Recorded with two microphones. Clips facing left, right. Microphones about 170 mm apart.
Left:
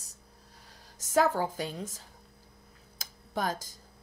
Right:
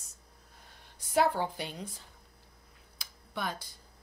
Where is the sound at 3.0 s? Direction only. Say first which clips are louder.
Left 5 dB; 40° left (ahead or behind).